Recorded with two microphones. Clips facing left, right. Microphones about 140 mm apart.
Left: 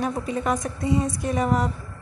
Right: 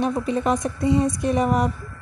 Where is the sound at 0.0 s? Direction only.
20° right (ahead or behind).